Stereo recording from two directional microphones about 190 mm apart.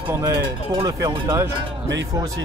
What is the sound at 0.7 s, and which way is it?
Speech, 25° right (ahead or behind).